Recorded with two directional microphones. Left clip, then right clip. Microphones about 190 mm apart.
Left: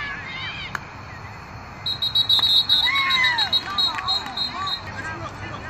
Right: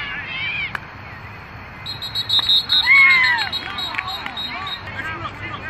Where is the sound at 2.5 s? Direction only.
15° left (ahead or behind).